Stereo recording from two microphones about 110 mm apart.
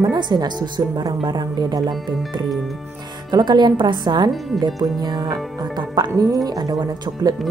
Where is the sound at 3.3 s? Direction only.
40° right (ahead or behind).